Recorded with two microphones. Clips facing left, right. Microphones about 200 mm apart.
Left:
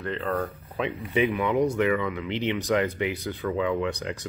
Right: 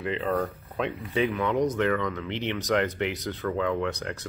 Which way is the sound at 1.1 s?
15° left (ahead or behind).